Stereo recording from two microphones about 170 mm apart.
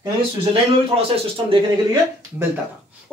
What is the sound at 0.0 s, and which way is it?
Speech, 35° right (ahead or behind).